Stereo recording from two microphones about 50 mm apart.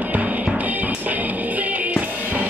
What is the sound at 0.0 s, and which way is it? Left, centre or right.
Music, right.